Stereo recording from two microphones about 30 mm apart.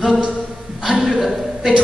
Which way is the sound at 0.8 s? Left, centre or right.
Centre.